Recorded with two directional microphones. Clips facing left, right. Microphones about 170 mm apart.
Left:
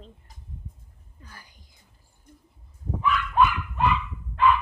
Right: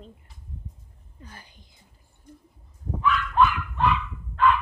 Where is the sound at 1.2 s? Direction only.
25° right (ahead or behind).